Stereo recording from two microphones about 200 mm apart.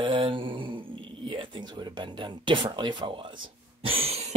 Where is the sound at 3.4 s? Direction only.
30° right (ahead or behind).